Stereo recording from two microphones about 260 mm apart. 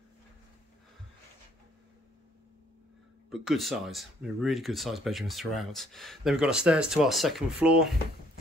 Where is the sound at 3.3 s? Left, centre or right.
Centre.